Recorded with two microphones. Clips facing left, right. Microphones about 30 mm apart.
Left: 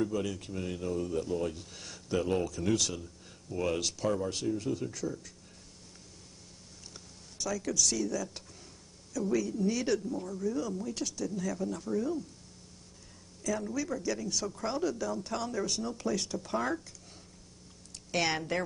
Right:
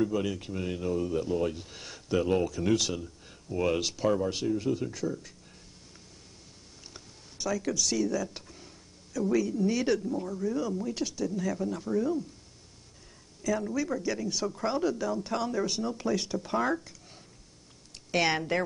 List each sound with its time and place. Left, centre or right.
0.0 s speech: centre
6.9 s a sound: centre
9.1 s speech: centre
13.4 s speech: centre